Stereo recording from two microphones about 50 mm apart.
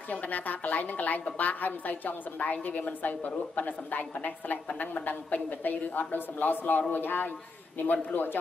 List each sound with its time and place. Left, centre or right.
0.1 s a woman's voice: left